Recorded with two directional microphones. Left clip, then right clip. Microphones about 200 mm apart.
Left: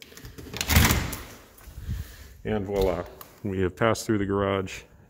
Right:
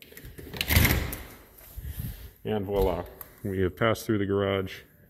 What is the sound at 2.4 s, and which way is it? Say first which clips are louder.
Speech: left 1 dB; 10° left (ahead or behind).